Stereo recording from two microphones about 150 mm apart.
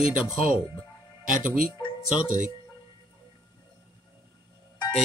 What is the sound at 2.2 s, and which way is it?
Speech, 60° right (ahead or behind).